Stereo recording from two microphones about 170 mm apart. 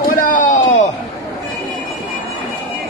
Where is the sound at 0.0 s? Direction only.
55° left (ahead or behind).